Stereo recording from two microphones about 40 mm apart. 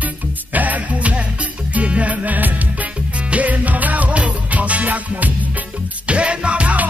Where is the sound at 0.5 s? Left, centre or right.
Right.